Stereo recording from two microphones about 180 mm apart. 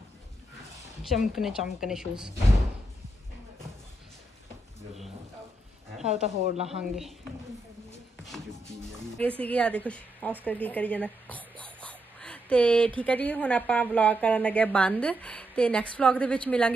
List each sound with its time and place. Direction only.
1.0 s a woman's voice: centre (ahead or behind)
6.0 s speech: 40° right (ahead or behind)
6.8 s a woman's voice: centre (ahead or behind)
9.4 s a woman's voice: 5° left (ahead or behind)